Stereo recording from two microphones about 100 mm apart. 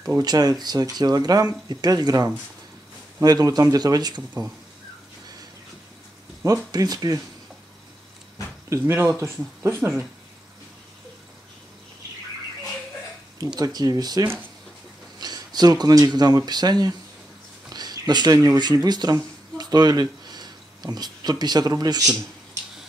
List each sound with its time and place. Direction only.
0.0 s speech: 40° right (ahead or behind)
6.4 s speech: 35° right (ahead or behind)
8.6 s speech: 30° right (ahead or behind)
13.4 s speech: 40° right (ahead or behind)
17.7 s a sound: 45° right (ahead or behind)
18.6 s speech: 45° right (ahead or behind)